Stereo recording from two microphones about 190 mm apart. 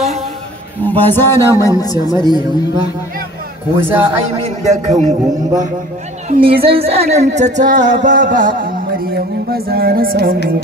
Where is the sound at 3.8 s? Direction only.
10° right (ahead or behind).